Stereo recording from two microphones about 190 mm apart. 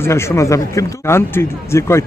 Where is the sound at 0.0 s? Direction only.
15° left (ahead or behind).